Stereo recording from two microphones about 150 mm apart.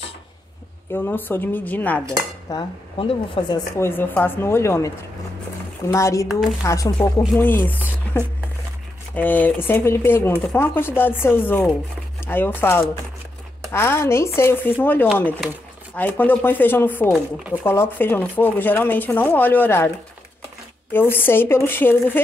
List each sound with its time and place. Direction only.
0.9 s speech: 15° left (ahead or behind)
2.5 s speech: 35° left (ahead or behind)
3.7 s speech: 15° left (ahead or behind)
8.1 s a sound: 10° left (ahead or behind)
9.1 s speech: 10° left (ahead or behind)
20.9 s speech: 15° left (ahead or behind)